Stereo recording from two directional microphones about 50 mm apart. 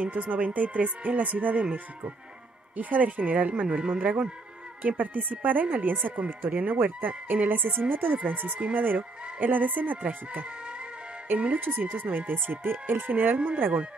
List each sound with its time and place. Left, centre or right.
0.0 s speech: right
3.6 s speech: centre
4.8 s speech: right
11.6 s speech: right